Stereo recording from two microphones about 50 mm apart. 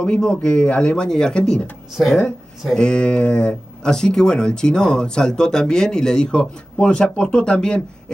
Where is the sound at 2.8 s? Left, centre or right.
Centre.